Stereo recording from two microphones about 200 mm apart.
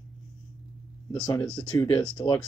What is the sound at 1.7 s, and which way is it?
Speech, 20° left (ahead or behind).